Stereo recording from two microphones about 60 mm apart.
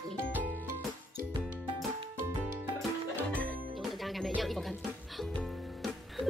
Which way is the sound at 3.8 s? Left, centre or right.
Centre.